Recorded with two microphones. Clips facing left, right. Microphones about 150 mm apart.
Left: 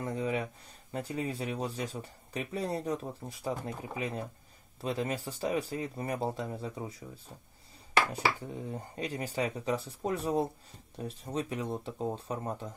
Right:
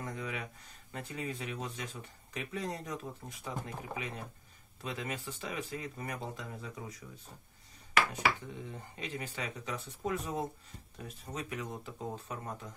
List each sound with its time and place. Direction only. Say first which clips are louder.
0.0 s speech: left 7 dB; 30° left (ahead or behind)
8.1 s speech: left 2 dB; 35° left (ahead or behind)